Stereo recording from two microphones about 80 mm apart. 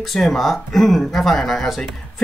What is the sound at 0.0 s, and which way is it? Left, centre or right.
Speech, centre.